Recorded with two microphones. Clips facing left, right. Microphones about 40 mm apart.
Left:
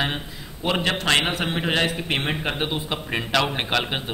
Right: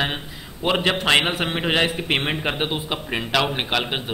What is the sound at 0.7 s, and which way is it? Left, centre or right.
A man's voice, centre.